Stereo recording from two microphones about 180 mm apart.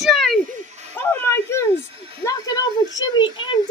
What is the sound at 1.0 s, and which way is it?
Speech, 15° left (ahead or behind).